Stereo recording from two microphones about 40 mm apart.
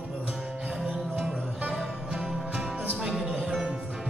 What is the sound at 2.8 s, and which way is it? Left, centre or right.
Music, centre.